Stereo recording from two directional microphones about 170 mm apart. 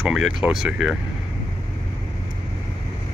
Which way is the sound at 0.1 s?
5° right (ahead or behind).